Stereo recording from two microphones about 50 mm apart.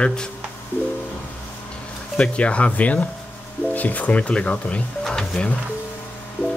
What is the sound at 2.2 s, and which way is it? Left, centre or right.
Speech, left.